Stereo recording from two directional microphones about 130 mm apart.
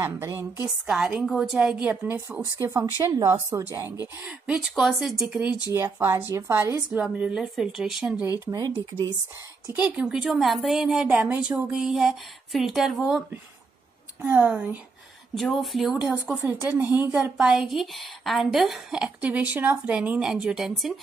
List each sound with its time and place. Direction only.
0.0 s speech: 20° right (ahead or behind)
0.8 s a woman's voice: 5° right (ahead or behind); by 3.3 s 25° right (ahead or behind)
4.3 s a woman's voice: 5° right (ahead or behind)
5.7 s speech: 20° right (ahead or behind)
6.9 s a woman's voice: 5° right (ahead or behind)
8.2 s speech: 20° right (ahead or behind)
9.7 s a woman's voice: 10° right (ahead or behind)
14.3 s a woman's voice: 10° right (ahead or behind)
15.3 s a woman's voice: centre (ahead or behind)
16.1 s a woman's voice: 15° right (ahead or behind)
17.1 s a woman's voice: 5° right (ahead or behind)